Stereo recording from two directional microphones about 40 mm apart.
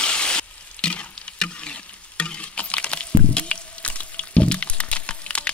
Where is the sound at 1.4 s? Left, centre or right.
Left.